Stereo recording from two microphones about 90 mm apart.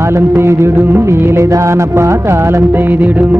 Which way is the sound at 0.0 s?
30° right (ahead or behind).